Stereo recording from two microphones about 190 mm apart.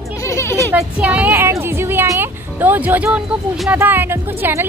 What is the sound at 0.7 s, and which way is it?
Speech, 5° right (ahead or behind).